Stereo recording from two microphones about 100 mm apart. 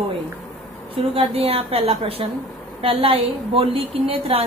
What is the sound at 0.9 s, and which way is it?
A woman's voice, 70° right (ahead or behind).